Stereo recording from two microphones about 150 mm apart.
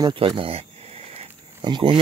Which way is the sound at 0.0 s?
35° right (ahead or behind).